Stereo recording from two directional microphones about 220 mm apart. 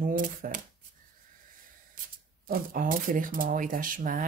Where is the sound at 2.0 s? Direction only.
40° right (ahead or behind).